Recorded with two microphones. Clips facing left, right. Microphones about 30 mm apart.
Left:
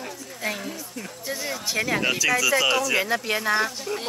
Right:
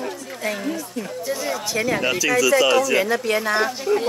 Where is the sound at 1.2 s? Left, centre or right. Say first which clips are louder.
Right 3 dB; centre.